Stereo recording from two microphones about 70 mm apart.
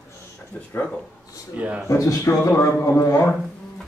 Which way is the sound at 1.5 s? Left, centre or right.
Right.